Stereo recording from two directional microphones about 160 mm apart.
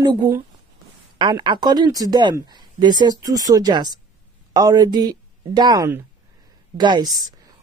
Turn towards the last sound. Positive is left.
turn(degrees=-25)  # may be behind; listen again after turning